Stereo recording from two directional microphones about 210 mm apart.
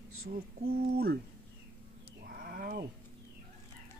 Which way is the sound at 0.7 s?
50° right (ahead or behind).